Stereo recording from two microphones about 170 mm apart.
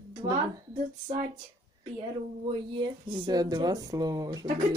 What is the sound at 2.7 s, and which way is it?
A woman's voice, 25° right (ahead or behind).